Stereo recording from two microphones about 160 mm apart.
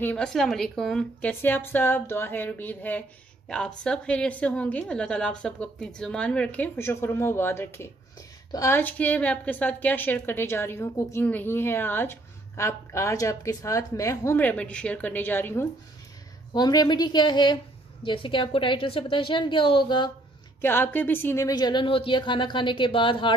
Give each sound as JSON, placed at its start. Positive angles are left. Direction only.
{"t": 0.0, "sound": "a woman's voice", "side_deg": 5}
{"t": 16.5, "sound": "a woman's voice", "side_deg": 25}
{"t": 20.6, "sound": "speech", "side_deg": 10}